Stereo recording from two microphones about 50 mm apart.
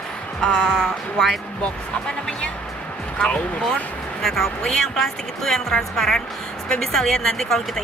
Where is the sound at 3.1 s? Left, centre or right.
Left.